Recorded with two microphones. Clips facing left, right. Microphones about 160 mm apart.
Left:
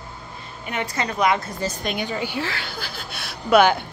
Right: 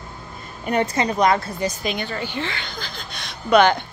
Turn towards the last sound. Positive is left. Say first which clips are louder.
# even
turn(degrees=5)  # may be behind; listen again after turning